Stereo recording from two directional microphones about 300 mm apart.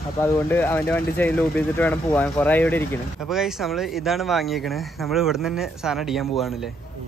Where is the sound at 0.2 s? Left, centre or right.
Centre.